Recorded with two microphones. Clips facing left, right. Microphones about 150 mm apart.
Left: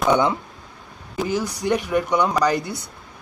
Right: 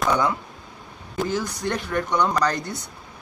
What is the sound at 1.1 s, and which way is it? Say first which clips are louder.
Speech: left 2 dB; 10° left (ahead or behind).